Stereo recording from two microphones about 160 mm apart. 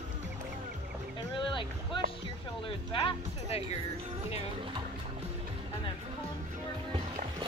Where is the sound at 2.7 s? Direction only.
35° left (ahead or behind).